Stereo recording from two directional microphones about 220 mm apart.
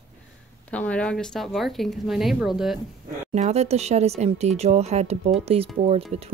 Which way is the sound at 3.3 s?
30° right (ahead or behind).